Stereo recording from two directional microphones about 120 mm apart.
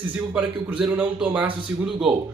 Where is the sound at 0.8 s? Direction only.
10° right (ahead or behind).